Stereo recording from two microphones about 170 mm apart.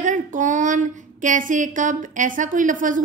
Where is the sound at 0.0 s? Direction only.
50° right (ahead or behind).